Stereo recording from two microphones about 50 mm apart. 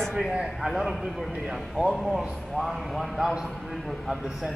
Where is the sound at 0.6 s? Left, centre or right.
Centre.